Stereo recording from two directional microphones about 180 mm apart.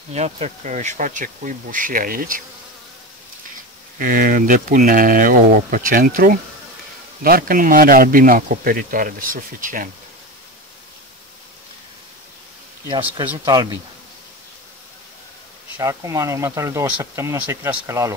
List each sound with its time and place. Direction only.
0.1 s speech: 40° right (ahead or behind)
4.0 s speech: 50° right (ahead or behind)
13.5 s speech: 20° right (ahead or behind)
15.8 s speech: 15° right (ahead or behind)